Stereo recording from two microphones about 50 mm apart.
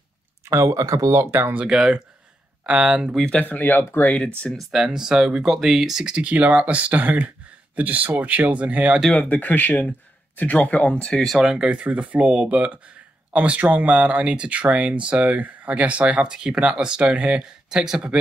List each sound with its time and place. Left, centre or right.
0.5 s speech: right
1.3 s speech: right
1.7 s speech: centre
3.3 s speech: left
4.7 s speech: centre; by 9.0 s right
9.1 s speech: left
10.8 s speech: centre
11.3 s speech: centre
11.8 s speech: right
17.6 s speech: centre